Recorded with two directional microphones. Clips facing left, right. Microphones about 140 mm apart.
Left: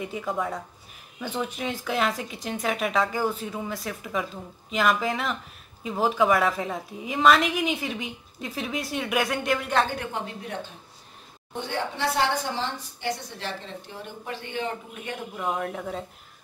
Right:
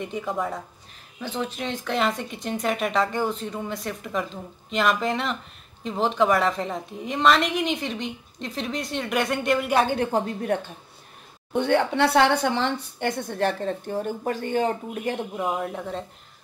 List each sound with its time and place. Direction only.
0.0 s speech: centre (ahead or behind)
1.2 s speech: 10° left (ahead or behind)
9.7 s speech: 15° right (ahead or behind)
9.9 s speech: 40° right (ahead or behind)
11.5 s speech: 65° right (ahead or behind); by 15.1 s 40° right (ahead or behind)
15.4 s speech: 5° right (ahead or behind)